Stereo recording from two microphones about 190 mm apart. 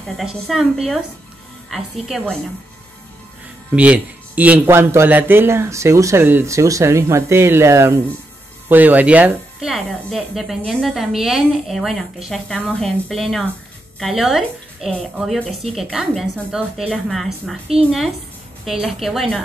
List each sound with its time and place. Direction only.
0.0 s a woman's voice: centre (ahead or behind)
3.7 s a man's voice: 5° right (ahead or behind)
17.8 s a woman's voice: 30° right (ahead or behind)
18.9 s a woman's voice: centre (ahead or behind)